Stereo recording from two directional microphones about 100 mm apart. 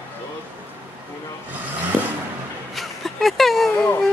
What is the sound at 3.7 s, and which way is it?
Speech, 20° left (ahead or behind).